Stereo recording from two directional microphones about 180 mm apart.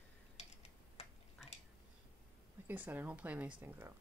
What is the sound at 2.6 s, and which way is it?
Speech, 10° right (ahead or behind).